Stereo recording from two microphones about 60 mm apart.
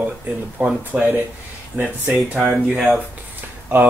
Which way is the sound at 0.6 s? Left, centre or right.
Right.